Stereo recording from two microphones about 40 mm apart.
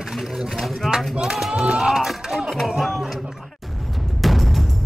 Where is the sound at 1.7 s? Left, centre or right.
Centre.